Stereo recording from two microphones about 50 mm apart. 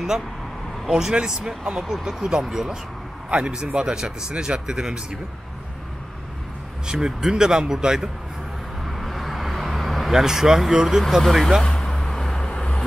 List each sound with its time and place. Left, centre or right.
0.8 s speech: centre
6.9 s speech: centre
8.8 s vehicle: centre
10.2 s speech: centre
11.6 s vehicle: centre
12.4 s vehicle: left